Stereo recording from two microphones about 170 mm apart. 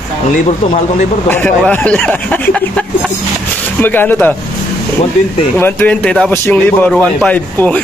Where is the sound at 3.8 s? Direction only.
10° left (ahead or behind).